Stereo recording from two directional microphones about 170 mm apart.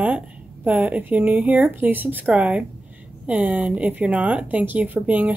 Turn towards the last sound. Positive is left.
turn(degrees=-10)  # may be behind; listen again after turning